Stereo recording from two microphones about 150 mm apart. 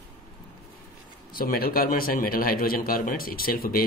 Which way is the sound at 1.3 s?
75° left (ahead or behind).